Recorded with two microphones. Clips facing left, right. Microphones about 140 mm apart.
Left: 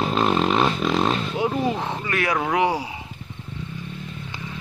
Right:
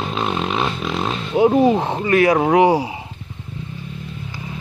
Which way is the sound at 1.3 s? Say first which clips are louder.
Right 9 dB; 35° right (ahead or behind).